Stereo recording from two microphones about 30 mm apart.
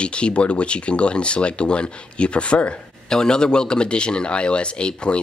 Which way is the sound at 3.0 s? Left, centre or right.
Left.